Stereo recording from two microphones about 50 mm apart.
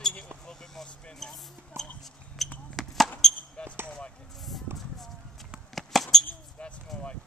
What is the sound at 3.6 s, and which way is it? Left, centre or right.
Basketball bounce, left.